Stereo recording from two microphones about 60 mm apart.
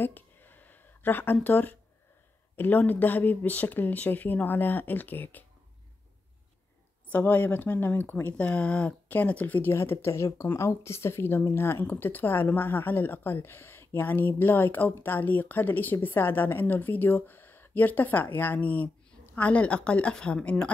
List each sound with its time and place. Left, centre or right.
0.0 s a sound: left
2.5 s speech: left
7.1 s a woman's voice: left
9.7 s speech: left
11.8 s a woman's voice: left; by 20.7 s centre